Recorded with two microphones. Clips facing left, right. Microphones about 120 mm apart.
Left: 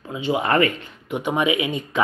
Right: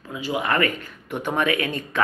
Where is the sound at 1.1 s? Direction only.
15° left (ahead or behind).